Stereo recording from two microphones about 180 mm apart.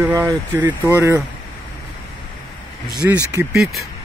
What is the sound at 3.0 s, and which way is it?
Speech, 10° right (ahead or behind).